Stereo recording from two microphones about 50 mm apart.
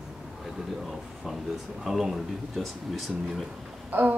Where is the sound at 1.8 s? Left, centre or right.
Centre.